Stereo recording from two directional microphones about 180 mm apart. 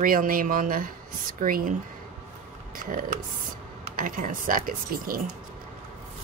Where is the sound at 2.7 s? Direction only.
50° right (ahead or behind).